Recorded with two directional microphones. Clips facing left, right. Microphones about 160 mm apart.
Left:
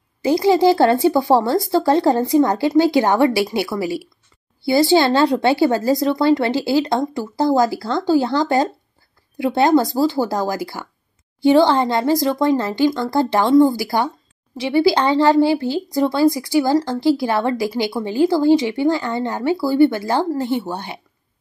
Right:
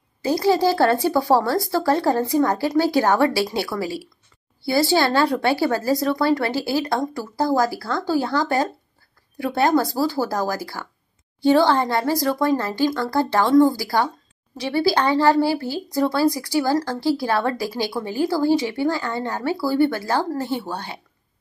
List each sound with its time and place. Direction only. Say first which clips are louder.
0.2 s speech: left 4 dB; 15° left (ahead or behind)